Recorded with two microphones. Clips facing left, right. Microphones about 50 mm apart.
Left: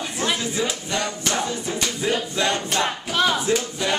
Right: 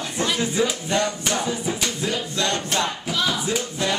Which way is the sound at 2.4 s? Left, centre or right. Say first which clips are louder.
Right 1 dB; centre.